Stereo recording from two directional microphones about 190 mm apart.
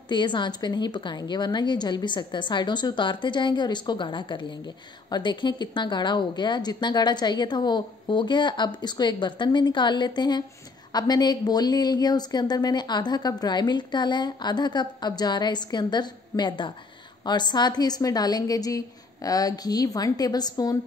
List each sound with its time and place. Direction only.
0.1 s a woman's voice: 25° left (ahead or behind)